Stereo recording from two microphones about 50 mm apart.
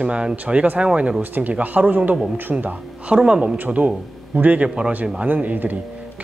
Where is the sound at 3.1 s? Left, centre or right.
Centre.